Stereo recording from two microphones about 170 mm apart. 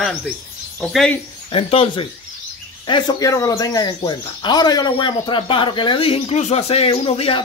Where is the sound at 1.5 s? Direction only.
35° left (ahead or behind).